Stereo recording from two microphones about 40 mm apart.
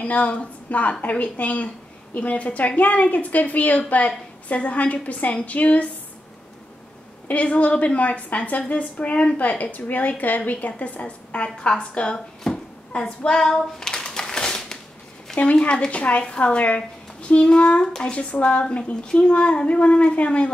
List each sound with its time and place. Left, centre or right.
0.0 s a woman's voice: left
7.2 s a woman's voice: left
12.5 s a sound: centre
15.7 s a woman's voice: left